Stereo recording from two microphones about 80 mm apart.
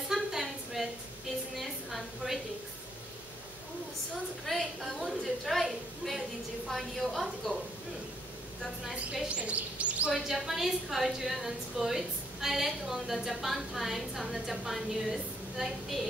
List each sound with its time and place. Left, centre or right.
0.1 s a sound: centre
4.5 s a woman's voice: centre
9.1 s a woman's voice: centre
10.1 s a woman's voice: centre